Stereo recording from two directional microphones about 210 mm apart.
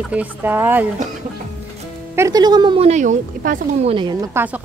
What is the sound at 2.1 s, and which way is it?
Speech, 15° right (ahead or behind).